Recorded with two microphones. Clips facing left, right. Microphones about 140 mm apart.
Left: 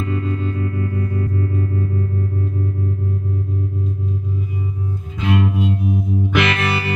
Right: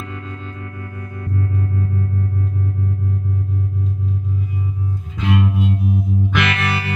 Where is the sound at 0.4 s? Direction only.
10° left (ahead or behind).